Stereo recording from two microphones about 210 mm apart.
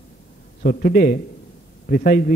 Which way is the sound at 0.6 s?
45° left (ahead or behind).